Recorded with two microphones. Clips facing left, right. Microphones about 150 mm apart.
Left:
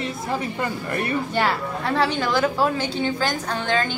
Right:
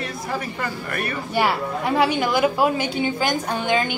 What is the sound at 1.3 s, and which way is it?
A woman's voice, 10° right (ahead or behind).